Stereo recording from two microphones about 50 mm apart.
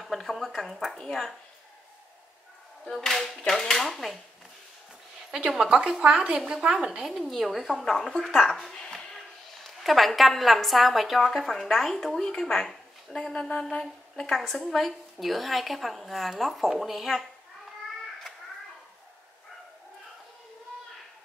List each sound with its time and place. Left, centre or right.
0.0 s speech: centre
2.9 s a woman's voice: centre
5.5 s a woman's voice: centre
7.1 s a woman's voice: centre